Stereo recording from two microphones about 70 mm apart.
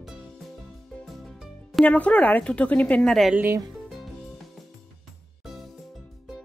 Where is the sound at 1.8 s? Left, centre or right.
Left.